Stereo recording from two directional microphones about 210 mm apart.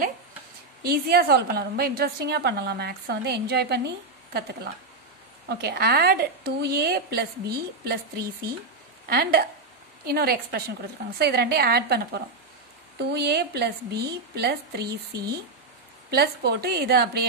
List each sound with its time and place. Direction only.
0.8 s a woman's voice: 45° right (ahead or behind)
5.5 s a woman's voice: 50° right (ahead or behind)
16.1 s a woman's voice: 50° right (ahead or behind)